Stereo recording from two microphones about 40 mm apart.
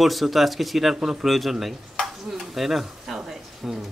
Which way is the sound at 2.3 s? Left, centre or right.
Centre.